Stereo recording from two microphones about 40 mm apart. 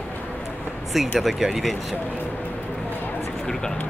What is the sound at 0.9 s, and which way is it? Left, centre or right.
Speech, centre.